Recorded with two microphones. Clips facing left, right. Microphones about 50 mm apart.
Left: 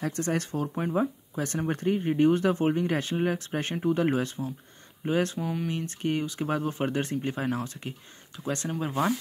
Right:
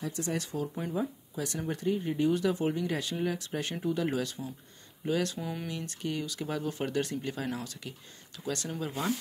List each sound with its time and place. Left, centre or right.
0.0 s speech: left
5.4 s speech: centre
5.7 s speech: left